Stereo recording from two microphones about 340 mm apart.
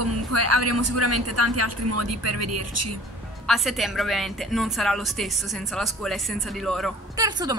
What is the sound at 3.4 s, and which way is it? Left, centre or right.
A woman's voice, centre.